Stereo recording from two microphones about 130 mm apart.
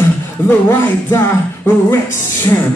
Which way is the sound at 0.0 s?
20° left (ahead or behind).